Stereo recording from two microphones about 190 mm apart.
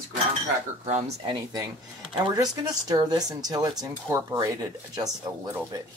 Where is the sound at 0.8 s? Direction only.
40° right (ahead or behind).